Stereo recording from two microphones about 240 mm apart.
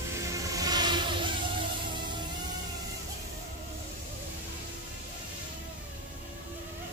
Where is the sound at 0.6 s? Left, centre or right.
Centre.